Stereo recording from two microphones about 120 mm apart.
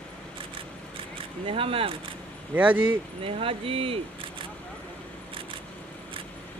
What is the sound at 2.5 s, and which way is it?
Speech, 10° right (ahead or behind).